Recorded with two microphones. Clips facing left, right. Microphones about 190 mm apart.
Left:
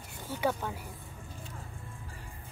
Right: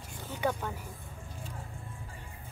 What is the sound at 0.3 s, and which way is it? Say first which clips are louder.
Speech: left 1 dB; 10° left (ahead or behind).